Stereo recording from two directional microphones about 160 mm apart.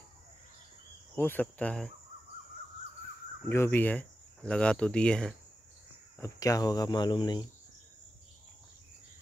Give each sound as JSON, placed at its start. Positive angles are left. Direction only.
{"t": 1.1, "sound": "speech", "side_deg": 10}
{"t": 3.4, "sound": "speech", "side_deg": 15}
{"t": 6.2, "sound": "speech", "side_deg": 20}